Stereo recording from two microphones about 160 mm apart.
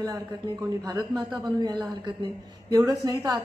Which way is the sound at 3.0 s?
25° right (ahead or behind).